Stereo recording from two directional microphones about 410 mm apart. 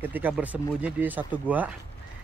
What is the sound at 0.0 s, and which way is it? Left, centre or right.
Speech, centre.